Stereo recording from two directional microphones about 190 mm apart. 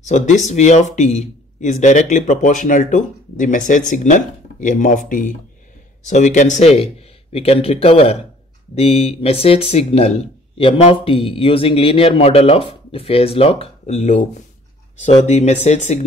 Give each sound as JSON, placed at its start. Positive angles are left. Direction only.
{"t": 0.0, "sound": "speech", "side_deg": 40}
{"t": 15.2, "sound": "speech", "side_deg": 35}